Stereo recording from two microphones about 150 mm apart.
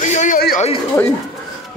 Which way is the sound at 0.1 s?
55° left (ahead or behind).